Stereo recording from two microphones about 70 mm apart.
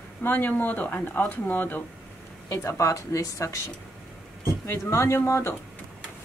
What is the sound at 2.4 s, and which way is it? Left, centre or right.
Speech, left.